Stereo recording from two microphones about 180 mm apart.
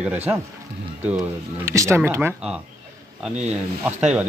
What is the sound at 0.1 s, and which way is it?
Speech, 10° right (ahead or behind).